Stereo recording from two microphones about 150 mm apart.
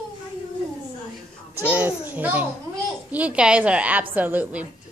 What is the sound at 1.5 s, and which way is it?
A child's voice, 10° right (ahead or behind).